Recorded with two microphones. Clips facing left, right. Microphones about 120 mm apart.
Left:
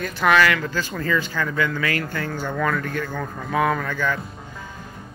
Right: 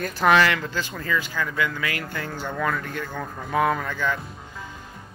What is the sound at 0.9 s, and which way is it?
Speech, 5° right (ahead or behind).